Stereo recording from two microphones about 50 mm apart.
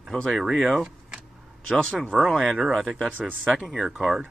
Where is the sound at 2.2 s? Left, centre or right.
Centre.